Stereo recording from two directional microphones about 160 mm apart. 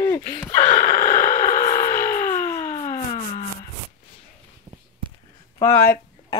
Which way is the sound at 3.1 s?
45° left (ahead or behind).